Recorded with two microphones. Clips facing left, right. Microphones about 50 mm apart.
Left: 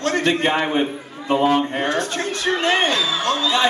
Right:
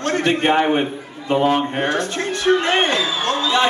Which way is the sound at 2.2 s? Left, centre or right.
Right.